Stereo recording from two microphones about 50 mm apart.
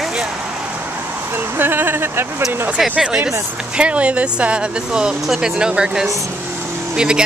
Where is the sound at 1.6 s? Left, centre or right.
Right.